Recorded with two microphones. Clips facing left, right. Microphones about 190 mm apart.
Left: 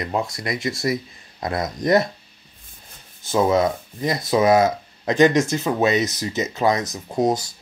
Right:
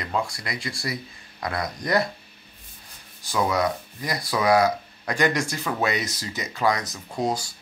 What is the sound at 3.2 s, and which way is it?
Speech, 25° left (ahead or behind).